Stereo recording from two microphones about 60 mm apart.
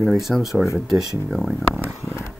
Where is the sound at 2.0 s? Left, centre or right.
Left.